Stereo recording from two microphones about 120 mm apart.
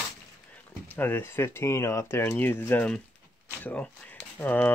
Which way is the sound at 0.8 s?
15° left (ahead or behind).